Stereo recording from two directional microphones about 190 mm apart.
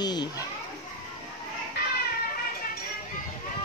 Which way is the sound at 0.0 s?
20° left (ahead or behind).